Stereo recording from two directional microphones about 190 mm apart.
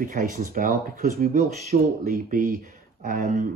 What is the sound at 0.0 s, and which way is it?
Speech, 45° right (ahead or behind).